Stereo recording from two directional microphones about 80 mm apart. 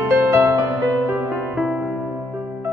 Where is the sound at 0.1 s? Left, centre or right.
Right.